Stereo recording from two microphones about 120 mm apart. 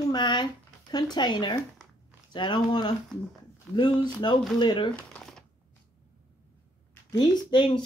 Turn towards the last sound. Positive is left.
turn(degrees=40)  # may be behind; listen again after turning